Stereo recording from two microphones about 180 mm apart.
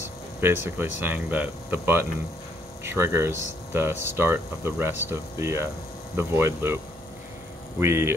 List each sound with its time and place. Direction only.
0.4 s speech: 10° right (ahead or behind)
7.8 s speech: 15° right (ahead or behind)